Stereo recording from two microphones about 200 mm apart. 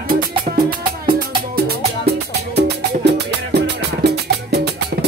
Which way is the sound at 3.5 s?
55° right (ahead or behind).